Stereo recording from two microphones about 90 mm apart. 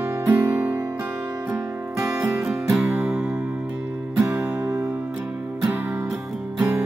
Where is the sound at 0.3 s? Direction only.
20° right (ahead or behind).